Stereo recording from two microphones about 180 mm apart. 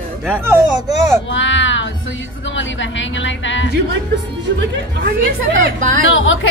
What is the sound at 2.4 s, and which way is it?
A woman's voice, 90° left.